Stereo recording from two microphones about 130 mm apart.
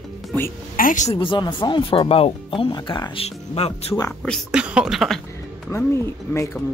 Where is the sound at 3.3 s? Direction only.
55° left (ahead or behind).